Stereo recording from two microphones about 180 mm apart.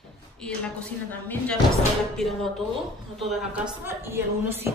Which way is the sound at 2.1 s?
Centre (ahead or behind).